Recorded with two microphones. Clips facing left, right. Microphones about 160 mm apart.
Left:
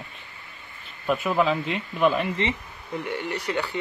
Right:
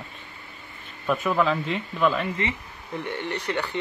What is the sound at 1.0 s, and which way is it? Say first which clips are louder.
Speech: even; 15° left (ahead or behind).